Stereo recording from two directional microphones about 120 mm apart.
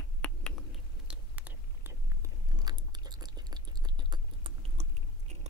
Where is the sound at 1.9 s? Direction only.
30° right (ahead or behind).